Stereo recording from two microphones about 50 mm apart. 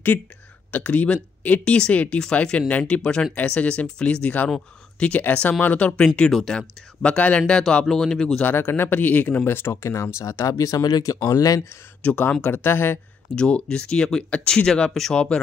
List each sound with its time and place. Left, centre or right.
0.7 s speech: left; by 6.6 s centre
7.0 s speech: left; by 8.4 s centre
8.4 s speech: left
12.0 s speech: left
13.3 s speech: centre